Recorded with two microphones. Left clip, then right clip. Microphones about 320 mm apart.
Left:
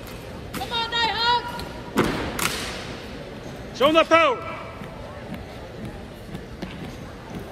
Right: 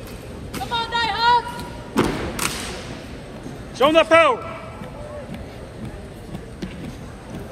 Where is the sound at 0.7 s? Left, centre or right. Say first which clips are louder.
Right 2 dB; right.